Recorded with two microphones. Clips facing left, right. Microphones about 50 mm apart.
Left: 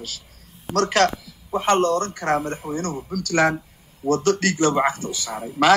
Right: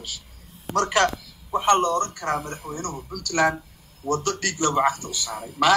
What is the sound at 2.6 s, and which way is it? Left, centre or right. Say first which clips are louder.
Speech: left 6 dB; left.